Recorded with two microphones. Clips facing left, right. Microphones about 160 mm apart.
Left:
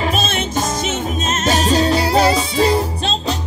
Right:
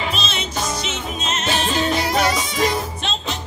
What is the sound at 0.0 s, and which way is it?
Music, 50° left (ahead or behind).